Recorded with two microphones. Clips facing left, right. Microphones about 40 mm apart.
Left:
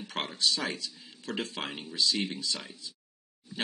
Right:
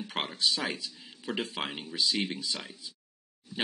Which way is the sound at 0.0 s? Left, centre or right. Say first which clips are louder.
Even; centre.